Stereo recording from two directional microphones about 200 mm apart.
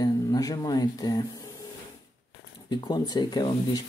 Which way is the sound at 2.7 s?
20° left (ahead or behind).